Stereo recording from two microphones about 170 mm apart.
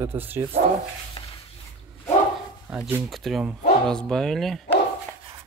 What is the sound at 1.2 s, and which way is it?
Stir, 30° left (ahead or behind).